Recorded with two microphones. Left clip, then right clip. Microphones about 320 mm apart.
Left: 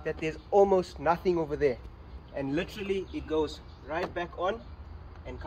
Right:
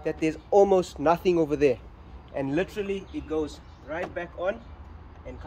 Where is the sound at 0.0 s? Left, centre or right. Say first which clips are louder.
Right 5 dB; right.